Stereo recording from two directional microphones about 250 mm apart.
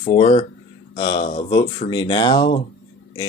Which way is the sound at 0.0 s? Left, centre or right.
Left.